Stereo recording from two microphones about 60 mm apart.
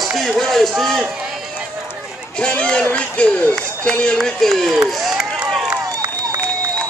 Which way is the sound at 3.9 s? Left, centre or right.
Centre.